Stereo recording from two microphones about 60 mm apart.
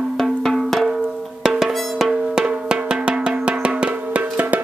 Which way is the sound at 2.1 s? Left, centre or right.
Centre.